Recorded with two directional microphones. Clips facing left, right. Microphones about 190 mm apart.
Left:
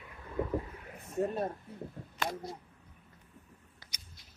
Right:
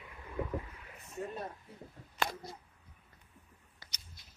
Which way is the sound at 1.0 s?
50° left (ahead or behind).